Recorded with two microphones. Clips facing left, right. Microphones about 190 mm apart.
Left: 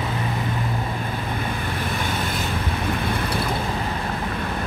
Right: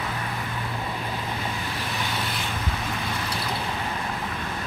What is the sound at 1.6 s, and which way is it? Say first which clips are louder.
Vehicle: left 4 dB; 50° left (ahead or behind).